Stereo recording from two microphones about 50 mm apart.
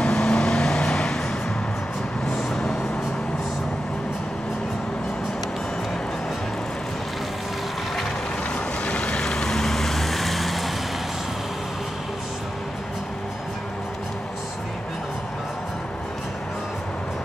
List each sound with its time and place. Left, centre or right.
0.0 s vehicle: centre
2.2 s vehicle: centre
8.8 s vehicle: left
9.2 s vehicle: centre